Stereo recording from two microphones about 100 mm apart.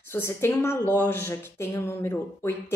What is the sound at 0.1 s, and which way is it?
A woman's voice, 25° left (ahead or behind).